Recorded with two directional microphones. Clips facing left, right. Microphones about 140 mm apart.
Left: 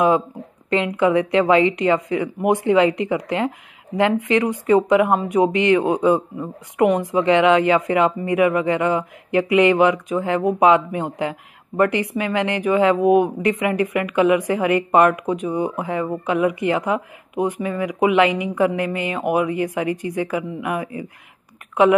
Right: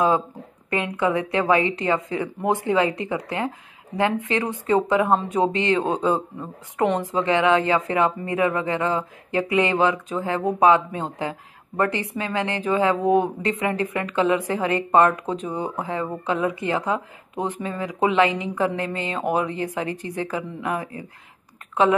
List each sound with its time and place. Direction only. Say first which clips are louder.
0.7 s a woman's voice: left 5 dB; 20° left (ahead or behind)